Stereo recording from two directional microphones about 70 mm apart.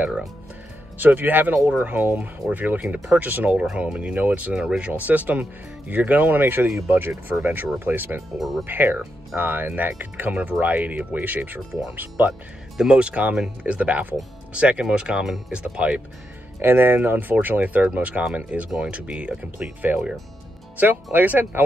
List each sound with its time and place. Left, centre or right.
0.9 s speech: right
8.4 s speech: centre
8.6 s speech: right
12.7 s speech: centre
16.6 s speech: right